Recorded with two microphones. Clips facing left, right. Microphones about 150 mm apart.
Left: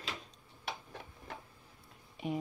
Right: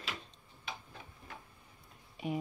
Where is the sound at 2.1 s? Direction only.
Centre (ahead or behind).